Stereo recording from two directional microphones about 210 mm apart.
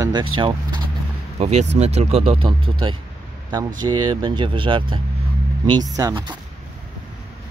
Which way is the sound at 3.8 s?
20° right (ahead or behind).